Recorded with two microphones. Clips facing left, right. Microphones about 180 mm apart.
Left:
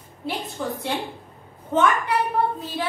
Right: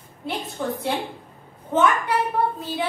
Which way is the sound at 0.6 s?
Centre (ahead or behind).